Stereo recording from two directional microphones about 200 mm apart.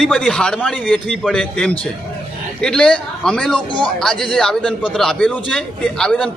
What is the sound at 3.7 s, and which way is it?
Speech, 25° left (ahead or behind).